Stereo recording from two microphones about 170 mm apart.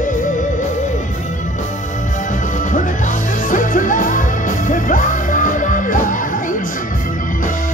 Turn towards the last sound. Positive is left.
turn(degrees=50)  # may be behind; listen again after turning